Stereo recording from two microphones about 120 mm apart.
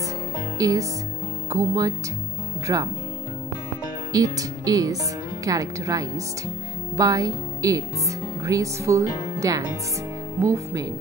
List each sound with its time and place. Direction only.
0.6 s music: 30° right (ahead or behind)
1.5 s speech: 30° right (ahead or behind)
4.1 s speech: 30° right (ahead or behind)